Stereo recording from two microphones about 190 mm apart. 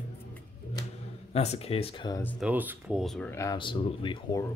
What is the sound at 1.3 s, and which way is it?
Speech, 35° left (ahead or behind).